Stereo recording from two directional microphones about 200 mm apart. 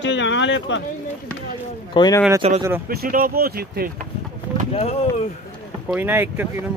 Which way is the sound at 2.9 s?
50° right (ahead or behind).